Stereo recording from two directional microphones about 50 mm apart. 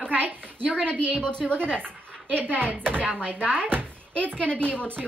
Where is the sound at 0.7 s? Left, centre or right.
Left.